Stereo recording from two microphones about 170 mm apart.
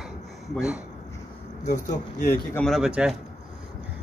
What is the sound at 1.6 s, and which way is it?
Speech, 40° left (ahead or behind).